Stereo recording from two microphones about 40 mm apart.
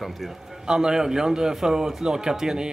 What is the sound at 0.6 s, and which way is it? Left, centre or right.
A man's voice, centre.